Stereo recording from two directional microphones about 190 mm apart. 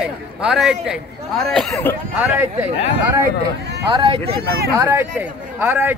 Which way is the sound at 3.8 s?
30° right (ahead or behind).